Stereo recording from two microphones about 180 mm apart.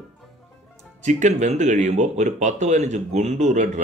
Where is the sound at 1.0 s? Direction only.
40° right (ahead or behind).